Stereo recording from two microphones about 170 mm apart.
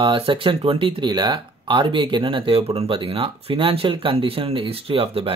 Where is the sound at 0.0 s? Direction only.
30° right (ahead or behind).